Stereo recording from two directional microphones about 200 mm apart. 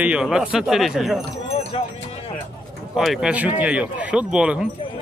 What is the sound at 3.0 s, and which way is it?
Speech, centre (ahead or behind).